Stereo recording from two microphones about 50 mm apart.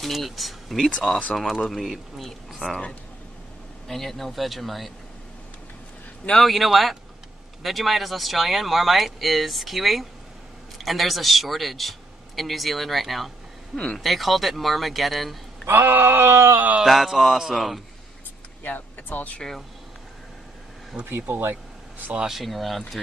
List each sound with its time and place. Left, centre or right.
0.0 s speech: centre
3.8 s speech: centre
6.4 s speech: centre
15.7 s a sound: right
16.5 s speech: right
16.8 s speech: centre
18.6 s speech: left
21.0 s a sound: right
22.2 s speech: centre